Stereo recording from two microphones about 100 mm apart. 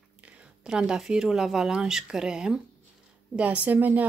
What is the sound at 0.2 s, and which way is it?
Speech, 10° right (ahead or behind).